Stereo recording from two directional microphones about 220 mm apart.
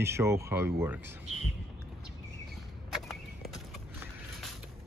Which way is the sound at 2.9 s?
Centre (ahead or behind).